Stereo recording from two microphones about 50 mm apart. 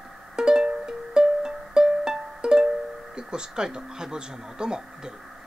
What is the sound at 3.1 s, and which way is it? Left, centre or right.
Speech, centre.